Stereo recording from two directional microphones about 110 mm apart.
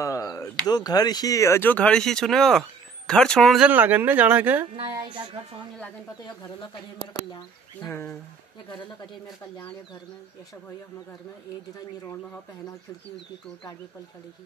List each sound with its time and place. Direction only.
0.0 s speech: 30° left (ahead or behind); by 3.5 s 5° left (ahead or behind)
3.5 s speech: 15° right (ahead or behind)
4.9 s speech: 45° right (ahead or behind)
7.9 s speech: 20° left (ahead or behind)
8.6 s speech: 45° left (ahead or behind)
12.1 s speech: 25° left (ahead or behind)